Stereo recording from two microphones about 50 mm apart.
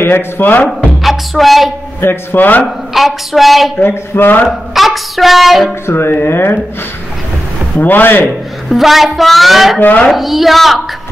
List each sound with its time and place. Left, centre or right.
0.0 s speech: left
1.0 s speech: centre
2.0 s speech: left
2.6 s speech: centre
3.8 s a man's voice: left
4.5 s a sound: centre
5.9 s a man's voice: left
7.8 s speech: left
8.6 s speech: centre
9.8 s speech: left
10.1 s speech: centre